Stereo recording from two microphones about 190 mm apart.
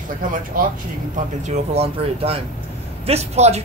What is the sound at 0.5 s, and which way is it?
Speech, 50° right (ahead or behind).